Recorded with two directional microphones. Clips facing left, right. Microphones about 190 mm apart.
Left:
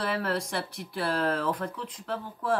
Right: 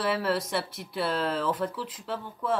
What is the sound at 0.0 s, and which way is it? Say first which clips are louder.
Speech: right 2 dB; 5° right (ahead or behind).